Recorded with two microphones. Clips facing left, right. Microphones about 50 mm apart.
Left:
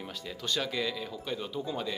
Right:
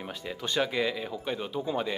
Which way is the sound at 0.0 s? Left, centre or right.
Right.